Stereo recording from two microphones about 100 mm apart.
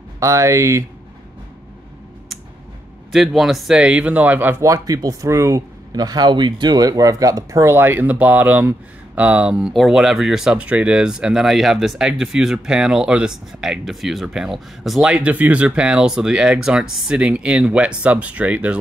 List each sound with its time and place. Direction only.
0.2 s speech: 30° right (ahead or behind)
3.1 s speech: centre (ahead or behind); by 4.6 s 20° right (ahead or behind)
4.6 s speech: 35° right (ahead or behind)
5.9 s speech: 40° right (ahead or behind); by 18.8 s 15° right (ahead or behind)